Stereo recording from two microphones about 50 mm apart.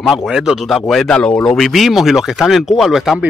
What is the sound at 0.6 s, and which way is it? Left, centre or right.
Speech, centre.